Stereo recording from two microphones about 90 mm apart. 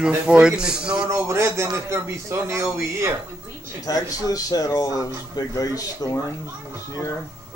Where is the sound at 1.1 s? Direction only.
30° right (ahead or behind).